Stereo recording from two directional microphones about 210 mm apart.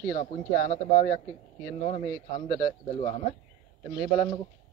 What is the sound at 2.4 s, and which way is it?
Speech, 30° left (ahead or behind).